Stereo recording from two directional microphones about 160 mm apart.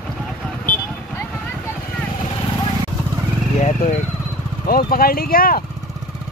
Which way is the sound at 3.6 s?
50° left (ahead or behind).